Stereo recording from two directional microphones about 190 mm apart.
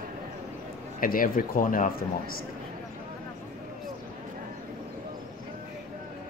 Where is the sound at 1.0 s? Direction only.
45° left (ahead or behind).